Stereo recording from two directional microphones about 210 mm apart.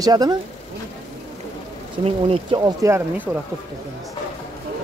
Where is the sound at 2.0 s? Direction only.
25° right (ahead or behind).